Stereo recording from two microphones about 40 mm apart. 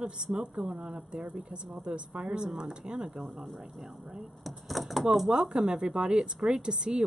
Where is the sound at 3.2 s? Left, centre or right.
Centre.